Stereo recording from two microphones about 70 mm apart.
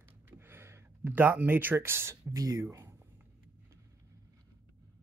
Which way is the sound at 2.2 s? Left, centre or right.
Right.